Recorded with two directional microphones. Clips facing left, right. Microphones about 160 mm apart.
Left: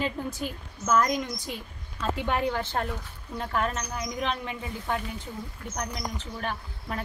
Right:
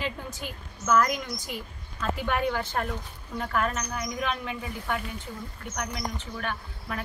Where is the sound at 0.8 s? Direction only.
30° left (ahead or behind).